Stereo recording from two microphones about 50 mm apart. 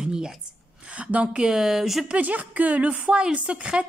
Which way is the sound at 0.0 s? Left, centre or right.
Centre.